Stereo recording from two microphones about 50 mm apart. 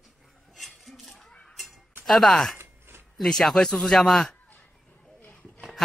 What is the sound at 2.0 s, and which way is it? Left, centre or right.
Speech, centre.